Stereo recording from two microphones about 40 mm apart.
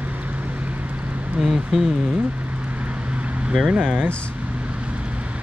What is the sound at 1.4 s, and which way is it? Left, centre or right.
Speech, centre.